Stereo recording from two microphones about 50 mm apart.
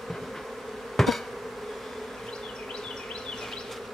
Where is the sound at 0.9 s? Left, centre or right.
Centre.